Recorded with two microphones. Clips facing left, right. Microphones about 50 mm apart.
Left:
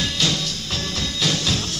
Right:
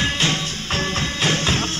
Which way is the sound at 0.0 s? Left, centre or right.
Right.